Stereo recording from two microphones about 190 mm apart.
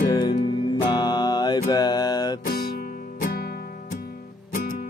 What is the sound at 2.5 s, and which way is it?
Music, 50° left (ahead or behind).